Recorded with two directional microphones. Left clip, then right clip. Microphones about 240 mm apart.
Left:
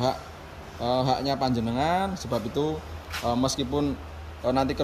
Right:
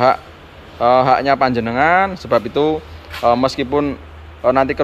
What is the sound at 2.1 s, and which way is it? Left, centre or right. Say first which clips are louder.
Speech: right 13 dB; centre.